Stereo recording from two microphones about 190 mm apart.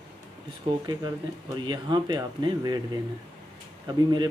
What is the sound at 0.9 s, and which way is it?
Speech, 20° right (ahead or behind).